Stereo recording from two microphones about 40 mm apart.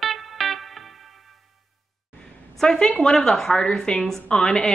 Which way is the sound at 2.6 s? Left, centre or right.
Centre.